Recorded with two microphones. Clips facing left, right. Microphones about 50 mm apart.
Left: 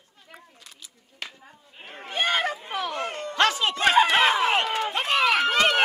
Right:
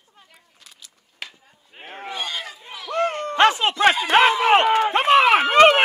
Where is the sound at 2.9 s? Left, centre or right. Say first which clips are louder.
Right 8 dB; right.